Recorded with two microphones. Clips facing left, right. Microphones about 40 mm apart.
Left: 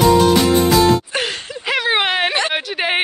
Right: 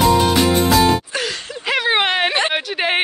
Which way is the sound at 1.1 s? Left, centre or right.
Left.